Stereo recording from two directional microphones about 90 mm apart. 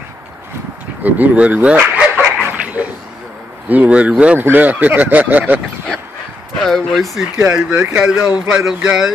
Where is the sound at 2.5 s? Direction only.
15° right (ahead or behind).